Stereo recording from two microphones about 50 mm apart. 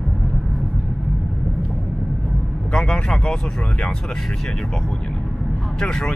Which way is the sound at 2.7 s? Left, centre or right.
Centre.